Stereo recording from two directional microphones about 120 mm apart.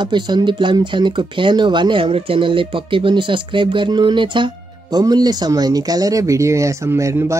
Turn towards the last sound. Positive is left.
turn(degrees=-25)  # may be behind; listen again after turning